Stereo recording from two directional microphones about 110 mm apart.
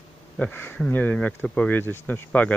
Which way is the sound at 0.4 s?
20° left (ahead or behind).